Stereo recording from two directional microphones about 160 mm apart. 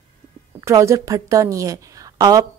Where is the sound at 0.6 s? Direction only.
20° right (ahead or behind).